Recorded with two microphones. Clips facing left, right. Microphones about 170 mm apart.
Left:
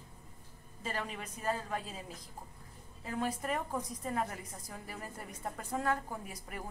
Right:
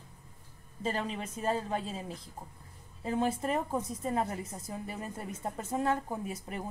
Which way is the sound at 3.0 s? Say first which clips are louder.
Right 6 dB; 25° right (ahead or behind).